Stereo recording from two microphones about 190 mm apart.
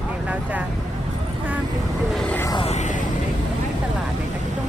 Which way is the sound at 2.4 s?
30° left (ahead or behind).